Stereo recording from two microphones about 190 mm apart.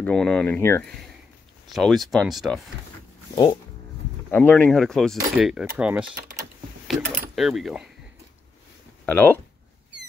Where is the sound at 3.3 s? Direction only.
20° left (ahead or behind).